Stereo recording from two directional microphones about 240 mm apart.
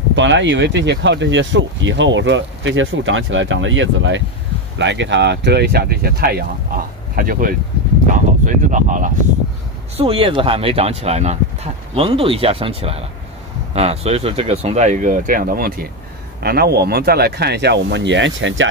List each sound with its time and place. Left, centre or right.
0.1 s speech: right